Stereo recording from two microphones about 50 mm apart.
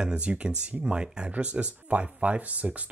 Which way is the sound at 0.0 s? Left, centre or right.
Right.